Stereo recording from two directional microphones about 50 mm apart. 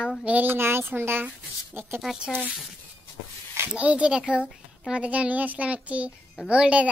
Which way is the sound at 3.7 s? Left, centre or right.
Right.